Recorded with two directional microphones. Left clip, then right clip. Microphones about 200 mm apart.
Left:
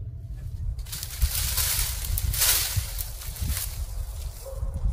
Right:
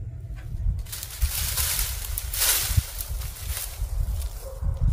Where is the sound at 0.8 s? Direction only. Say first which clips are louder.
Left 1 dB; 10° left (ahead or behind).